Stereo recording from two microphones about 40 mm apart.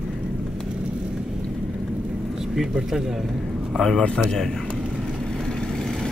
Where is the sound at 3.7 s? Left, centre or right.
Centre.